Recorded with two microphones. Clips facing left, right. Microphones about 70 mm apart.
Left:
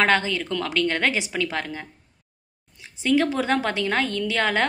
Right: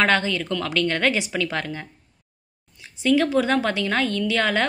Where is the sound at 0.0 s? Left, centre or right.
Left.